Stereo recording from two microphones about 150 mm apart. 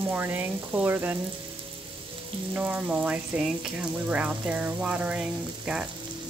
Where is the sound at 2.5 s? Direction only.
10° right (ahead or behind).